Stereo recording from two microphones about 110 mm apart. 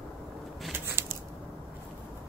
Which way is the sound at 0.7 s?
20° right (ahead or behind).